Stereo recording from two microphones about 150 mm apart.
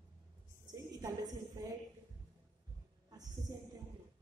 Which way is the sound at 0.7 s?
25° right (ahead or behind).